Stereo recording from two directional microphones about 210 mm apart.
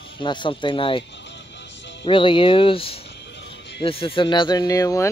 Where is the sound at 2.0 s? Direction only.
25° left (ahead or behind).